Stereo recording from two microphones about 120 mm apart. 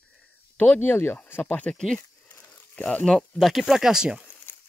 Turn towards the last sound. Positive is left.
turn(degrees=-5)  # may be behind; listen again after turning